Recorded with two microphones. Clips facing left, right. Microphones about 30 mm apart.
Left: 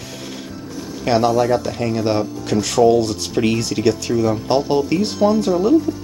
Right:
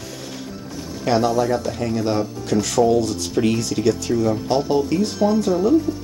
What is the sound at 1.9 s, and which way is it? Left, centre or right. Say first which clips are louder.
Music: left 2 dB; left.